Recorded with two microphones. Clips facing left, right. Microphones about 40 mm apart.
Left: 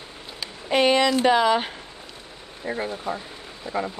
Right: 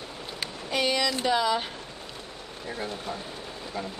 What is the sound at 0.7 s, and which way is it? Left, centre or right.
A woman's voice, left.